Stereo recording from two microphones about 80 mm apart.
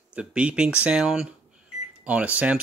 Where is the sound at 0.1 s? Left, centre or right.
Centre.